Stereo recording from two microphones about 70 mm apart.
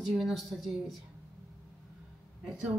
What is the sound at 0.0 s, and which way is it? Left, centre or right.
Speech, centre.